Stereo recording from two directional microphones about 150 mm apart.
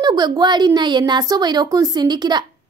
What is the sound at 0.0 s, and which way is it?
A woman's voice, 25° right (ahead or behind).